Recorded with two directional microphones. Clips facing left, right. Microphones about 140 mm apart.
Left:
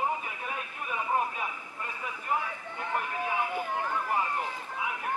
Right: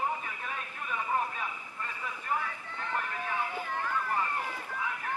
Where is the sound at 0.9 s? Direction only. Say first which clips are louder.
Left 2 dB; 10° left (ahead or behind).